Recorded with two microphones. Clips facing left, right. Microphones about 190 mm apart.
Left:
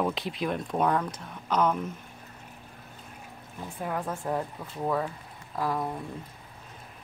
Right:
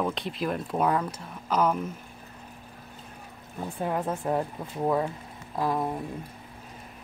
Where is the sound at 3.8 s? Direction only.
20° right (ahead or behind).